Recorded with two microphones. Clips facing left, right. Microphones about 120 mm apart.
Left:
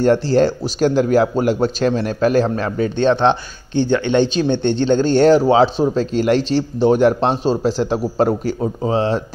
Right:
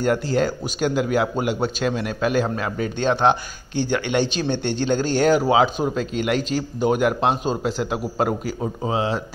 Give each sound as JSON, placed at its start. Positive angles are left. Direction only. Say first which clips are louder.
{"t": 0.0, "sound": "a man's voice", "louder": "left 6 dB", "side_deg": 35}
{"t": 3.1, "sound": "speech", "louder": "left 3 dB", "side_deg": -10}
{"t": 4.1, "sound": "a man's voice", "louder": "left 6 dB", "side_deg": 20}